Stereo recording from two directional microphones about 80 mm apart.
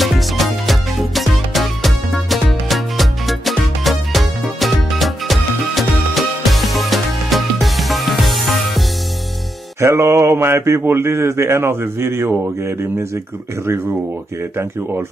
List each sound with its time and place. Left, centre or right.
0.0 s music: centre
9.8 s speech: right